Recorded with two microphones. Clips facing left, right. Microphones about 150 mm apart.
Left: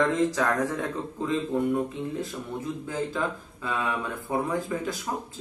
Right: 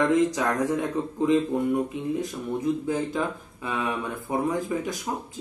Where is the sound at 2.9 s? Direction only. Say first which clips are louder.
Right 3 dB; 15° right (ahead or behind).